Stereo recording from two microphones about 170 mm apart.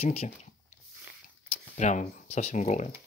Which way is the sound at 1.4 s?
45° left (ahead or behind).